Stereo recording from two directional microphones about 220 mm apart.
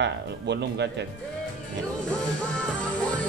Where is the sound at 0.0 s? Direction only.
50° right (ahead or behind).